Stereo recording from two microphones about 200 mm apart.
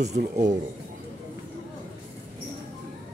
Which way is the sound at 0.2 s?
40° right (ahead or behind).